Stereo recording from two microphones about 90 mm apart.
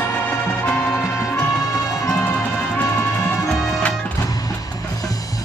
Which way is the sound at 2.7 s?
25° left (ahead or behind).